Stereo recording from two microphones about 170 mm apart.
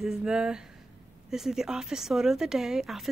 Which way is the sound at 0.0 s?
5° right (ahead or behind).